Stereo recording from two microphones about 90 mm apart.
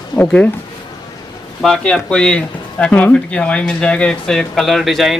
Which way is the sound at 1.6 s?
5° left (ahead or behind).